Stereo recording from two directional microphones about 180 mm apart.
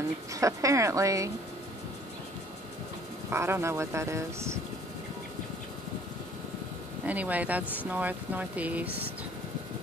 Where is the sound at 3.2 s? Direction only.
15° right (ahead or behind).